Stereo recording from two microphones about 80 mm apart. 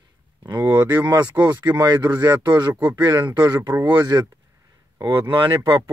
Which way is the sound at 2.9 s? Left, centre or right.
Right.